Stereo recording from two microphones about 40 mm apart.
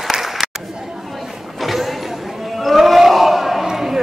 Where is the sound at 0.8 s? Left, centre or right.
Centre.